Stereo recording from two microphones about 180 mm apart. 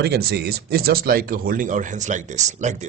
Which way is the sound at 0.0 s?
60° right (ahead or behind).